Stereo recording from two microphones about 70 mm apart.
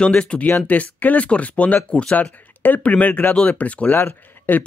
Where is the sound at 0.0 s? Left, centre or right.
Centre.